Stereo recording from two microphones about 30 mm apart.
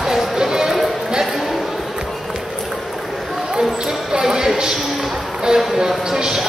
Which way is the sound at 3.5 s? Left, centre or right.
Right.